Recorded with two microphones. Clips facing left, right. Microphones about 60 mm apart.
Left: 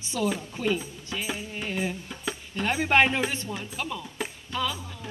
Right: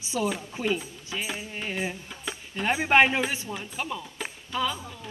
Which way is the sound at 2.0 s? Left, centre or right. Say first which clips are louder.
Left 3 dB; centre.